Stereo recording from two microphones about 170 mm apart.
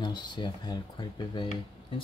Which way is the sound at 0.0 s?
25° left (ahead or behind).